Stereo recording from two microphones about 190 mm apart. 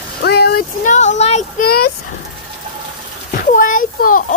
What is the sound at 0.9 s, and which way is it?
Speech, 40° left (ahead or behind).